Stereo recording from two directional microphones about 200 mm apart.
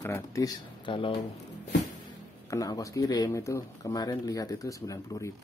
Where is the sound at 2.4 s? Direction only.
15° left (ahead or behind).